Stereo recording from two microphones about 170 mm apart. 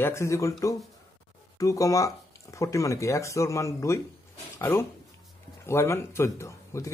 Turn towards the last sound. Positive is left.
turn(degrees=15)  # may be behind; listen again after turning